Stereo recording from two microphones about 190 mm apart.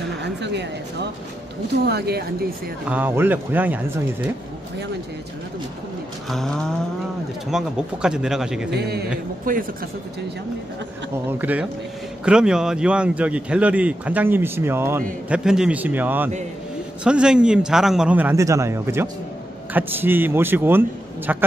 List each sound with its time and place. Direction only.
0.2 s a sound: 65° right (ahead or behind)
1.9 s speech: 55° right (ahead or behind)
2.9 s speech: 10° right (ahead or behind)
6.2 s a man's voice: centre (ahead or behind)
8.7 s speech: 60° right (ahead or behind)
9.5 s speech: 45° right (ahead or behind)
11.2 s a man's voice: 10° right (ahead or behind)